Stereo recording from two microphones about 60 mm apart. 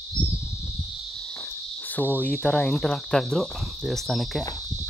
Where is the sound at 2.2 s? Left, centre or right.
Centre.